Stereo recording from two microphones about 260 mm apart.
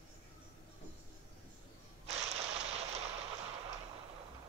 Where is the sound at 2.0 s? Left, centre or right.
Right.